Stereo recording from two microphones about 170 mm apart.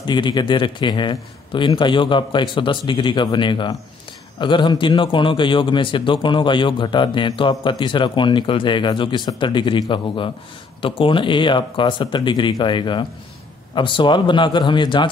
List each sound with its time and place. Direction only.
0.0 s a man's voice: 25° left (ahead or behind)